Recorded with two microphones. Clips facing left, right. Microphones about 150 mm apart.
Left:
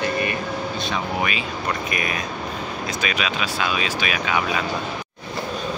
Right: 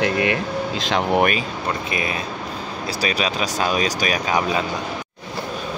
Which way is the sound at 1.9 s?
25° right (ahead or behind).